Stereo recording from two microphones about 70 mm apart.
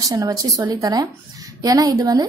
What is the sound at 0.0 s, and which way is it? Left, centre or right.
A woman's voice, right.